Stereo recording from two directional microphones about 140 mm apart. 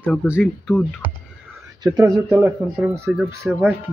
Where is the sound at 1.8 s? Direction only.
30° right (ahead or behind).